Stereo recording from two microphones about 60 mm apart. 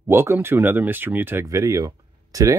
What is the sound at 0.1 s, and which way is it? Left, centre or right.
Speech, right.